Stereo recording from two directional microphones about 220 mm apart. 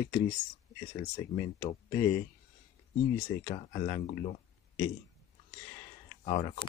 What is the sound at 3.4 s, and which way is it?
Speech, 30° left (ahead or behind).